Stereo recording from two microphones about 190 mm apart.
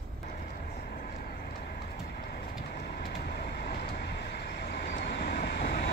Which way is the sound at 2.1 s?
55° left (ahead or behind).